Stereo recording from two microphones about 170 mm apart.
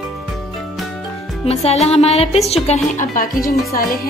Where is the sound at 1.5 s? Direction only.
40° left (ahead or behind); by 3.8 s 55° left (ahead or behind).